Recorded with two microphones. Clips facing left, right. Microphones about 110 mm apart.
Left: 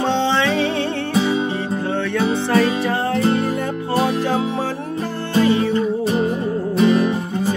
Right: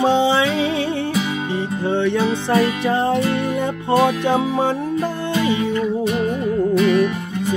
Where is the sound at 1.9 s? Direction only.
20° right (ahead or behind).